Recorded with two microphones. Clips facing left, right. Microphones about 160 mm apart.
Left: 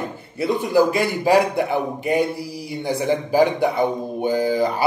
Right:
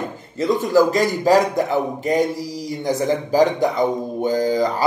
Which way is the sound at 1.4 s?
40° right (ahead or behind).